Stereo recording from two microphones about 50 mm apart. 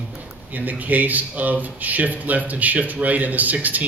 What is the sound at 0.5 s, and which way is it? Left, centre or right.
Speech, right.